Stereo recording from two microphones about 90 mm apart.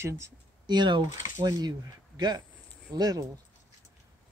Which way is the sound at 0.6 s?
55° right (ahead or behind).